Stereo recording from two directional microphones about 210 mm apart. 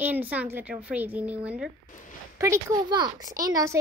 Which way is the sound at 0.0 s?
10° right (ahead or behind).